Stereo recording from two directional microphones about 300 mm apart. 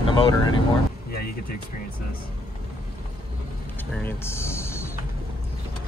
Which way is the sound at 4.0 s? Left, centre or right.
Centre.